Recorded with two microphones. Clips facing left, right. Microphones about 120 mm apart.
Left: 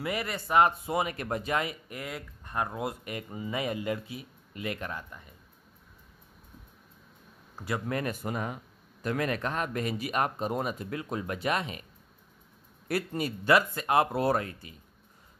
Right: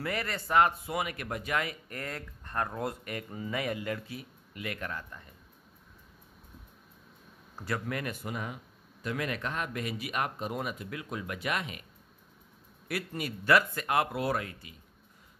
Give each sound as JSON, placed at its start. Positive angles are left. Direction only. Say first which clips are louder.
{"t": 0.0, "sound": "speech", "louder": "left 1 dB", "side_deg": 15}
{"t": 7.9, "sound": "speech", "louder": "left 4 dB", "side_deg": 40}
{"t": 12.8, "sound": "speech", "louder": "left 5 dB", "side_deg": 35}